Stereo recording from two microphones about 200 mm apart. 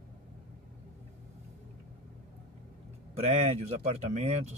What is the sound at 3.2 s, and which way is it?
Speech, 35° right (ahead or behind).